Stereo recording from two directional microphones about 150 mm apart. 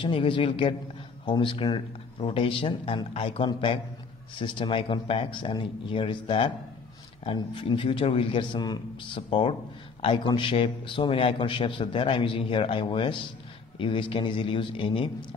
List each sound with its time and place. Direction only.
0.0 s a man's voice: 35° left (ahead or behind)